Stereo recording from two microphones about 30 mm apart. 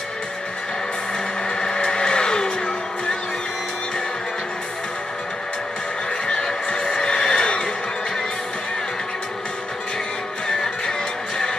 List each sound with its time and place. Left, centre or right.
1.6 s vehicle: left
6.7 s vehicle: left
10.5 s music: left